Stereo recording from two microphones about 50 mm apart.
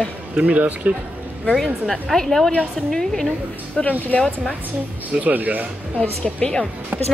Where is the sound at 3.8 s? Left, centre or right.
Left.